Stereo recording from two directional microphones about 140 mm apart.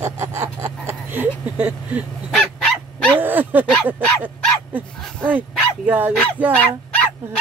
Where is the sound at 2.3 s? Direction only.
5° left (ahead or behind).